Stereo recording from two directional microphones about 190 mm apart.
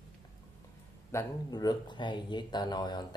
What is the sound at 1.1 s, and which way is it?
Speech, 20° left (ahead or behind).